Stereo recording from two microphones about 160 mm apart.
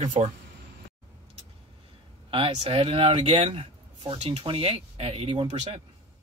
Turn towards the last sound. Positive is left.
turn(degrees=-35)  # may be behind; listen again after turning